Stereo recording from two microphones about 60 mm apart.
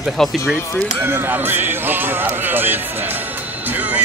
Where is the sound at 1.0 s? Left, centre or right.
Right.